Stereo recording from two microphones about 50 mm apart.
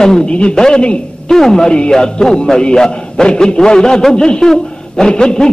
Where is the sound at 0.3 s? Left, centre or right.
Left.